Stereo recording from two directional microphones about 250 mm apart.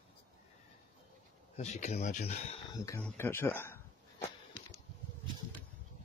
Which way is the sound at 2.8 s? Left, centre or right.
Centre.